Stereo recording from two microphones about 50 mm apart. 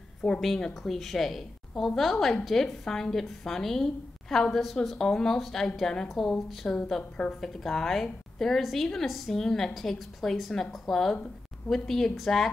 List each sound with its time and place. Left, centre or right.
0.2 s speech: centre
0.8 s a woman's voice: centre
7.0 s speech: centre
7.3 s a woman's voice: centre